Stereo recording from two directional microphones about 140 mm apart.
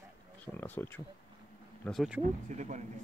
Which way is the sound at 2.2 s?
60° right (ahead or behind).